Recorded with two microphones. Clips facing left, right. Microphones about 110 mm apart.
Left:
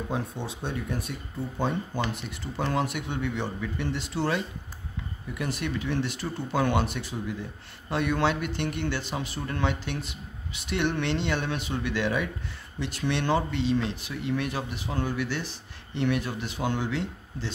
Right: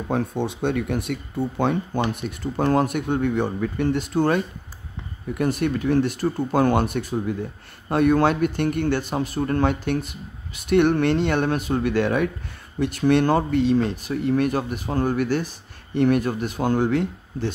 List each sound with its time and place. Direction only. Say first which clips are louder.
0.1 s speech: right 8 dB; 60° right (ahead or behind)
2.1 s speech: right 7 dB; 50° right (ahead or behind)